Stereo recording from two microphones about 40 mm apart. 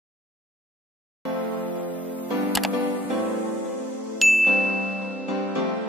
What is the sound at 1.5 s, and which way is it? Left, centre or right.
Music, left.